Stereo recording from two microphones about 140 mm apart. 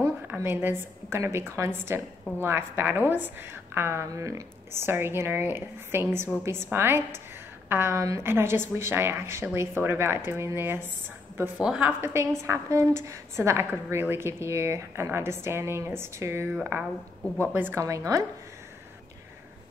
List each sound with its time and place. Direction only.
0.0 s a woman's voice: 15° right (ahead or behind)
17.5 s a woman's voice: 15° right (ahead or behind)